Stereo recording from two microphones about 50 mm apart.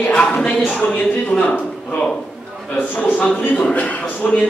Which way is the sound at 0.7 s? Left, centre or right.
Left.